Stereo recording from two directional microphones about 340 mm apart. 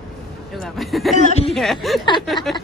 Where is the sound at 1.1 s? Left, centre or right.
Left.